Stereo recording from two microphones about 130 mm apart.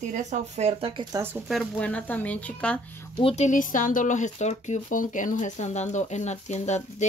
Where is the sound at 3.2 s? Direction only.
45° left (ahead or behind).